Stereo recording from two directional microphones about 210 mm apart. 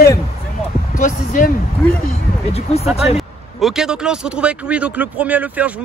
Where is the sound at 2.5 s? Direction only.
30° left (ahead or behind).